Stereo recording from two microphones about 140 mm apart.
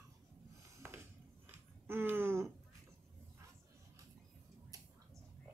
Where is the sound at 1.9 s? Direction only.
15° right (ahead or behind).